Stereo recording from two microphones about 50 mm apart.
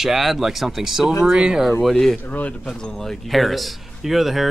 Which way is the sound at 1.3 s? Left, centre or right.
Centre.